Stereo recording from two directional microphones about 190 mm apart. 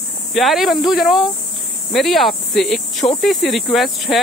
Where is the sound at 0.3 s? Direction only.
Centre (ahead or behind).